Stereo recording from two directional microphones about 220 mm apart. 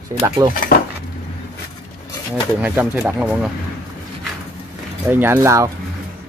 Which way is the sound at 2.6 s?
5° right (ahead or behind).